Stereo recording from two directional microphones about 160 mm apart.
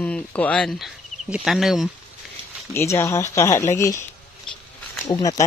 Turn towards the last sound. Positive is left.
turn(degrees=25)  # may be behind; listen again after turning